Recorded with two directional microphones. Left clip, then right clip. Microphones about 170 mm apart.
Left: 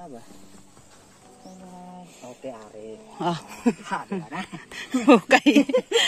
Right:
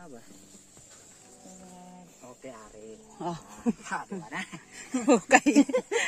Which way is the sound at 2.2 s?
5° right (ahead or behind).